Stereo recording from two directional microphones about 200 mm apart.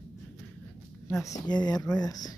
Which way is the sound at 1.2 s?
20° left (ahead or behind).